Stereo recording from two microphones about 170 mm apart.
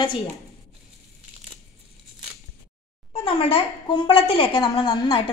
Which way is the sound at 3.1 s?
35° left (ahead or behind).